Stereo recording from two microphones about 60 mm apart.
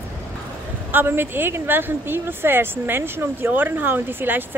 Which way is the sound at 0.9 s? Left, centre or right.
Right.